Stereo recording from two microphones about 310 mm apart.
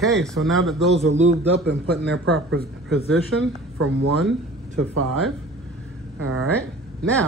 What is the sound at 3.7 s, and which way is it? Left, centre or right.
Speech, right.